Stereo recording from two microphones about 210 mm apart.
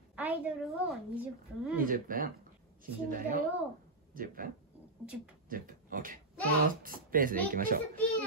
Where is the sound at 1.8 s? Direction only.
40° right (ahead or behind).